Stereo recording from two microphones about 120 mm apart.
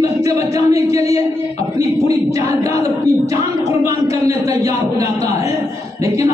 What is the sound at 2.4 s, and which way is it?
Speech, 25° right (ahead or behind).